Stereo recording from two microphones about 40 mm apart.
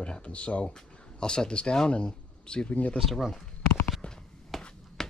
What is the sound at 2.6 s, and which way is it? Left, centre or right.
Speech, left.